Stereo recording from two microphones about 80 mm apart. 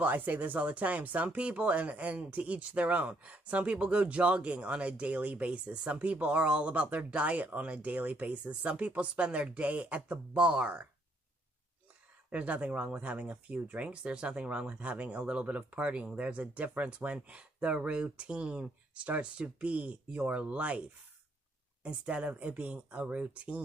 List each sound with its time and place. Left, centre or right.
0.0 s speech: right
12.3 s speech: centre
21.8 s speech: centre